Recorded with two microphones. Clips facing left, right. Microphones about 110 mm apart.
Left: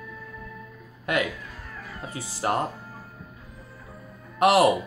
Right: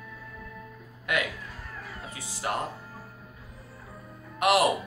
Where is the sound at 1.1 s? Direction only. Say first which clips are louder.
Left 4 dB; 35° left (ahead or behind).